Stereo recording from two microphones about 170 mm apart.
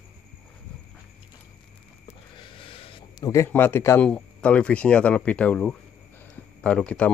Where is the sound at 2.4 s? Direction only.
30° left (ahead or behind).